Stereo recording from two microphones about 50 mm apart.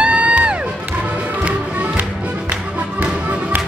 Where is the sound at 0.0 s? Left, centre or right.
Right.